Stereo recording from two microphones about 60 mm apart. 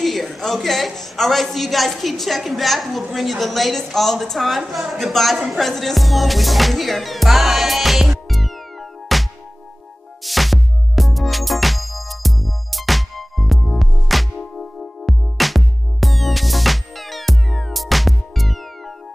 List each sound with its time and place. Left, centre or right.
0.0 s a man's voice: centre
5.5 s music: centre